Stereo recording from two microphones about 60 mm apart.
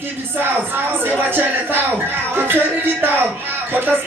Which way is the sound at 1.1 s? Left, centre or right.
Right.